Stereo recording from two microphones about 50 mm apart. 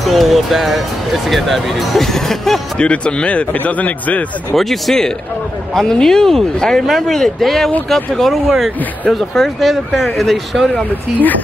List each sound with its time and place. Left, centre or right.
0.0 s speech: centre
2.8 s speech: left
4.6 s speech: centre
10.7 s speech: left